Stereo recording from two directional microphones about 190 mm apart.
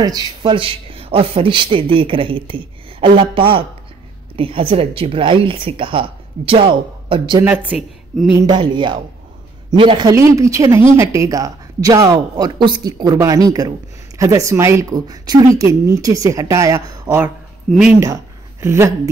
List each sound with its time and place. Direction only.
0.0 s a man's voice: 20° right (ahead or behind)
7.4 s a woman's voice: 5° right (ahead or behind)
8.4 s a man's voice: 25° right (ahead or behind)
17.6 s speech: 5° right (ahead or behind)
18.0 s a sound: 15° right (ahead or behind)